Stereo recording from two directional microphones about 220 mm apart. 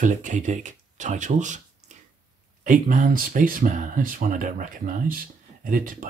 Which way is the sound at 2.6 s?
35° right (ahead or behind).